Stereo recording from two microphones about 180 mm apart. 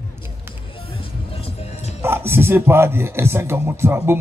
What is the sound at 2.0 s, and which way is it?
Speech, 15° right (ahead or behind).